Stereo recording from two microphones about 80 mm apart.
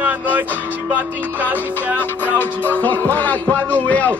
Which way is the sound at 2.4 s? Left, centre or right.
Left.